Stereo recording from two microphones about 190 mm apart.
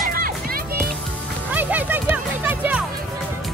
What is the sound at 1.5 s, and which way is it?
Music, 10° right (ahead or behind).